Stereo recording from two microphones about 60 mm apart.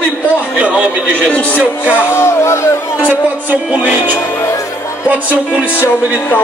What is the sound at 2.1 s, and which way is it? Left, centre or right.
Speech, left.